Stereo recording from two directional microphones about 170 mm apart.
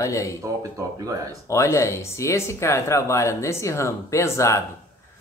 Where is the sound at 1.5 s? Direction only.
15° left (ahead or behind).